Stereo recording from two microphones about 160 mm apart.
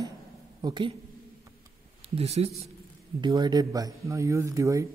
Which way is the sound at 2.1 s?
40° right (ahead or behind).